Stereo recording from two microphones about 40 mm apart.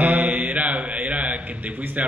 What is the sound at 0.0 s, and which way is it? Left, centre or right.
Mantra, right.